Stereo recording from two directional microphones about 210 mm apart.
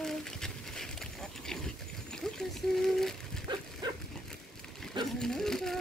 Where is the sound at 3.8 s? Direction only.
20° right (ahead or behind).